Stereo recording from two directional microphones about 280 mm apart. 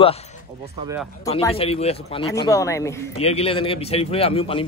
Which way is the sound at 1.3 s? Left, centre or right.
Left.